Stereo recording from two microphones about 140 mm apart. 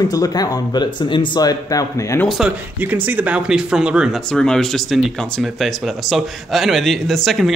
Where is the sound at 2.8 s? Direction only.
15° right (ahead or behind).